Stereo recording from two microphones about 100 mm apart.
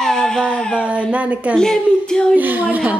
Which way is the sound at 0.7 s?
10° right (ahead or behind).